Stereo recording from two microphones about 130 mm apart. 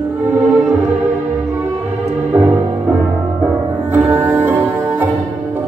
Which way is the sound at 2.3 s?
20° right (ahead or behind).